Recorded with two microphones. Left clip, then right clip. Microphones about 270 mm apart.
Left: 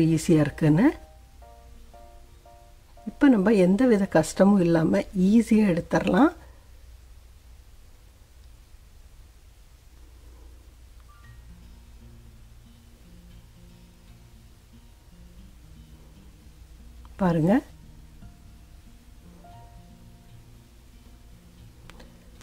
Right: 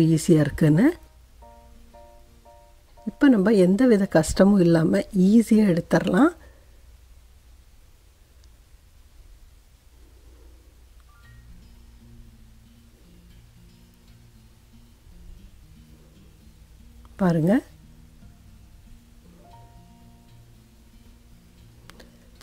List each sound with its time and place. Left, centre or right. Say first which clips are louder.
0.0 s speech: right 2 dB; centre
3.2 s speech: right 2 dB; centre
17.2 s speech: right 1 dB; centre
21.9 s tick-tock: right 1 dB; centre